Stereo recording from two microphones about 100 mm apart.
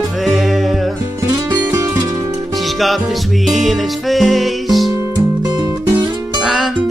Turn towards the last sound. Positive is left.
turn(degrees=0)  # may be behind; listen again after turning